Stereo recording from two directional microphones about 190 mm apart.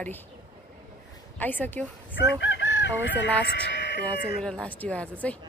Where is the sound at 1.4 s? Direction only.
10° left (ahead or behind).